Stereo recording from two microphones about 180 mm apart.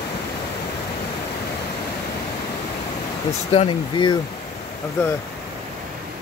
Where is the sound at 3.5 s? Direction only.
30° left (ahead or behind).